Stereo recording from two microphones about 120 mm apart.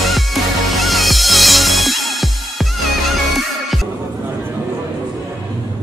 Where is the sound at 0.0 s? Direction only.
Centre (ahead or behind).